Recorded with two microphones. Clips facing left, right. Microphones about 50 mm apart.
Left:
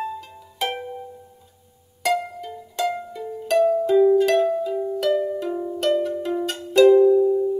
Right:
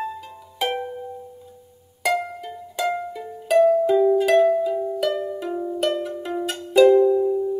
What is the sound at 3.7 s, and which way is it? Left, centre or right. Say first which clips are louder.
Music: even; centre.